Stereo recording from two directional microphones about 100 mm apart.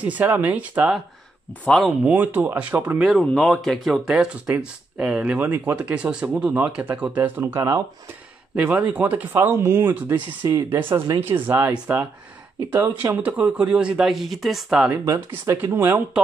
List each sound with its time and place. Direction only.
0.0 s speech: 15° right (ahead or behind)
1.7 s speech: centre (ahead or behind)
2.0 s speech: 20° right (ahead or behind)
3.0 s speech: centre (ahead or behind)
14.9 s speech: 25° right (ahead or behind)